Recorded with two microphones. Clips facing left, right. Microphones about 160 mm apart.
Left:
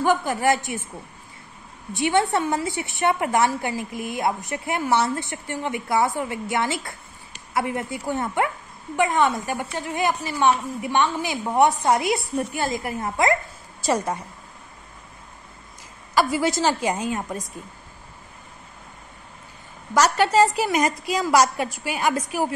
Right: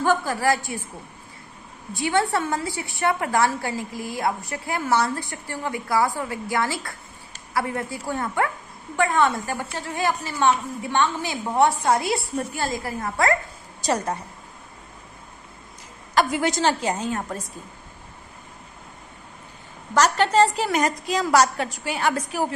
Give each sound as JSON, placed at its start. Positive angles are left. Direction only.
{"t": 0.0, "sound": "a woman's voice", "side_deg": 20}
{"t": 2.0, "sound": "a woman's voice", "side_deg": 20}
{"t": 16.2, "sound": "a woman's voice", "side_deg": 5}
{"t": 19.9, "sound": "a woman's voice", "side_deg": 10}